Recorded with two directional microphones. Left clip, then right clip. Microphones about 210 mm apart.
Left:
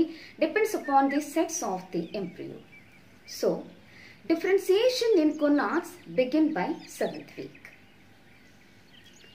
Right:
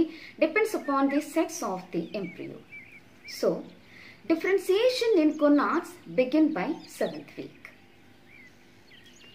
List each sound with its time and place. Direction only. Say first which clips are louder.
0.0 s speech: right 1 dB; centre (ahead or behind)
3.3 s frog: right 1 dB; 5° right (ahead or behind)
4.3 s speech: left 1 dB; centre (ahead or behind)